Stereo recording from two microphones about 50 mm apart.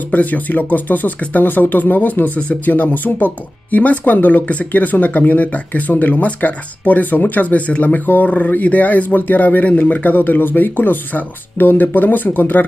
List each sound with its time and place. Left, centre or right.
0.1 s speech: left